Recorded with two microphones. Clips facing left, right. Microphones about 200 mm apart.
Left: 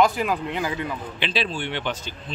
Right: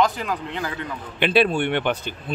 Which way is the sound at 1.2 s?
55° right (ahead or behind).